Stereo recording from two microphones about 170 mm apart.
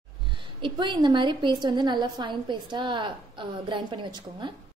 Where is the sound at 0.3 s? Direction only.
30° right (ahead or behind).